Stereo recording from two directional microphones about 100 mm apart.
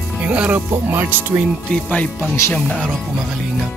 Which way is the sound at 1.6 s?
15° left (ahead or behind).